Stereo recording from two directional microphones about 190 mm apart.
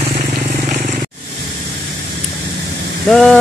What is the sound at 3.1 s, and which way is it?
Speech, centre (ahead or behind).